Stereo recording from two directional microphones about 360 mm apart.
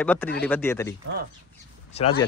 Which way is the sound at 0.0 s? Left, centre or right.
Centre.